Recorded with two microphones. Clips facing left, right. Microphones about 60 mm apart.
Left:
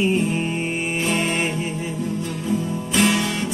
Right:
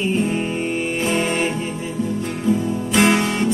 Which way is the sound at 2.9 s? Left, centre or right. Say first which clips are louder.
Right 3 dB; right.